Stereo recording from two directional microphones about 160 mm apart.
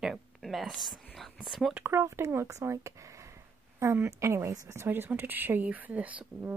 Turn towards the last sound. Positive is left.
turn(degrees=-10)  # may be behind; listen again after turning